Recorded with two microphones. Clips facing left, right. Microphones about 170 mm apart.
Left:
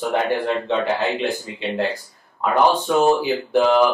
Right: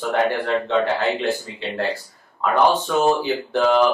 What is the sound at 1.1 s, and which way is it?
Speech, 20° left (ahead or behind).